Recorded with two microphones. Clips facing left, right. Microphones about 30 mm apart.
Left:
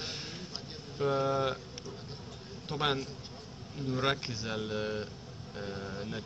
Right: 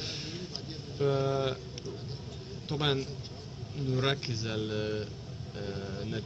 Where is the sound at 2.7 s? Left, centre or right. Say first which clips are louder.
Even; right.